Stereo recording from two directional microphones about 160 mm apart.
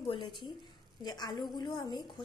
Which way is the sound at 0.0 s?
30° left (ahead or behind).